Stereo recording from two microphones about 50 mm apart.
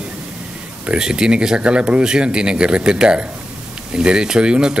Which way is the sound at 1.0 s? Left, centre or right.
Centre.